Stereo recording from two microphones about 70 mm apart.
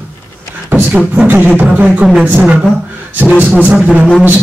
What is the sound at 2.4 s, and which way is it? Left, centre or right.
Speech, centre.